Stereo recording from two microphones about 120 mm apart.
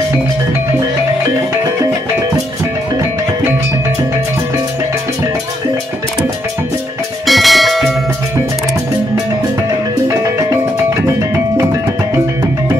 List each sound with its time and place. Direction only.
7.2 s bell: centre (ahead or behind)
10.0 s music: 25° right (ahead or behind)